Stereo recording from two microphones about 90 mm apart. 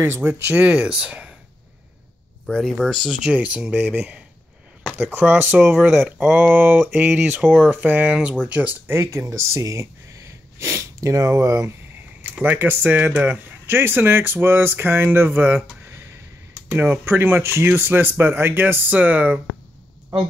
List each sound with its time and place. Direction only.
0.0 s speech: 25° right (ahead or behind)
2.4 s speech: 5° left (ahead or behind)
3.3 s speech: 10° right (ahead or behind)
5.9 s speech: 5° right (ahead or behind)
6.3 s speech: 20° right (ahead or behind)
12.2 s speech: 20° right (ahead or behind)